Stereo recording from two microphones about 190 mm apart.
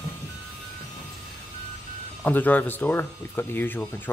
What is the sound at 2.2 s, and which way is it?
Speech, 10° left (ahead or behind).